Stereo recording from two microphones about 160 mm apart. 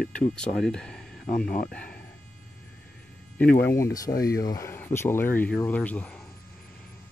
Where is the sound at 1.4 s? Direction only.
65° left (ahead or behind).